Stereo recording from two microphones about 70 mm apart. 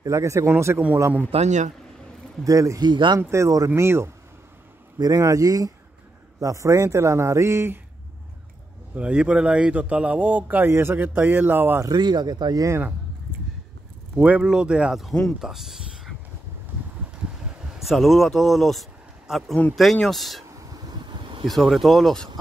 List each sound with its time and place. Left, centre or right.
0.0 s a man's voice: right
0.5 s speech: right
2.4 s a man's voice: right
2.8 s speech: right
3.2 s a man's voice: right
4.9 s speech: right
5.2 s a man's voice: right
8.9 s speech: centre
11.9 s speech: right
14.1 s speech: centre
15.4 s a sound: centre
17.7 s speech: centre
20.4 s a sound: right
21.5 s speech: centre